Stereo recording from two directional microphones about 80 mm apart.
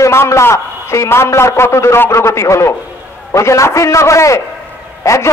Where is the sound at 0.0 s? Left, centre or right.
Left.